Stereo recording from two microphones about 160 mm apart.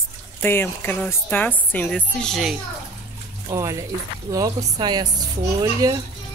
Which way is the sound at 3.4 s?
20° right (ahead or behind).